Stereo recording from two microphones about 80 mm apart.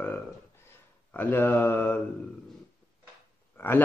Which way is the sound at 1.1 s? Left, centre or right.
Left.